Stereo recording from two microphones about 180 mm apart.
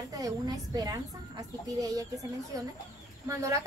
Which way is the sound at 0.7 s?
20° right (ahead or behind).